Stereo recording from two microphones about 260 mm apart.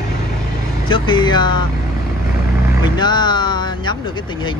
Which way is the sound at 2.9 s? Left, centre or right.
Centre.